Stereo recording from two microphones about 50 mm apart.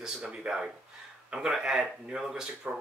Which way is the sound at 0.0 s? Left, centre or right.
Centre.